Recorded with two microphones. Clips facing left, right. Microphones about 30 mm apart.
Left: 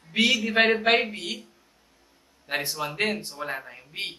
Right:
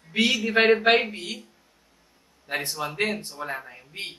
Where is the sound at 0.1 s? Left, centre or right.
Centre.